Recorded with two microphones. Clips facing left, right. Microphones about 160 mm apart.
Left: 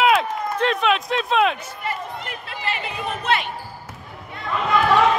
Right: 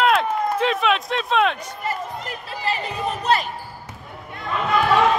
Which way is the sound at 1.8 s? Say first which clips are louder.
Right 2 dB; 40° right (ahead or behind).